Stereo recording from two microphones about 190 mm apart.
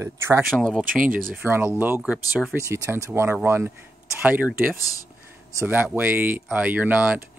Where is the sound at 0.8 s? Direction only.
45° right (ahead or behind).